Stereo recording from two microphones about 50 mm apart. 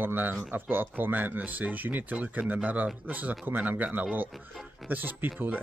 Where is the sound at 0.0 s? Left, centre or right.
Right.